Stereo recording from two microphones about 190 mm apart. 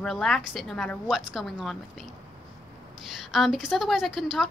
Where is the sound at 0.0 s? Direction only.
Centre (ahead or behind).